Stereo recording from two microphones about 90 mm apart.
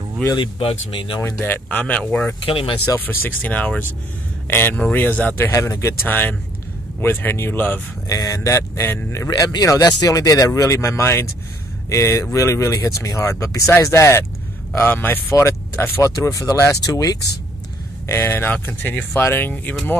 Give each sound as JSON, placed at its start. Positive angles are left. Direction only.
{"t": 0.6, "sound": "speech", "side_deg": 85}
{"t": 1.4, "sound": "speech", "side_deg": 20}
{"t": 2.4, "sound": "speech", "side_deg": 80}
{"t": 3.0, "sound": "speech", "side_deg": 20}
{"t": 5.5, "sound": "speech", "side_deg": 35}
{"t": 6.0, "sound": "speech", "side_deg": 20}
{"t": 8.1, "sound": "speech", "side_deg": 40}
{"t": 9.3, "sound": "speech", "side_deg": 45}
{"t": 16.2, "sound": "speech", "side_deg": 40}
{"t": 18.0, "sound": "speech", "side_deg": 25}